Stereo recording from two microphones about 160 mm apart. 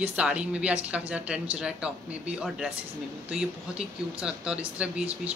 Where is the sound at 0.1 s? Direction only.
5° right (ahead or behind).